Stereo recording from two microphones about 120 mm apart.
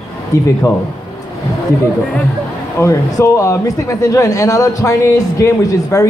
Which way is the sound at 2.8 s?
25° left (ahead or behind).